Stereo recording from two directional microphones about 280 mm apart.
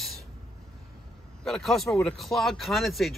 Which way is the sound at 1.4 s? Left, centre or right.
Centre.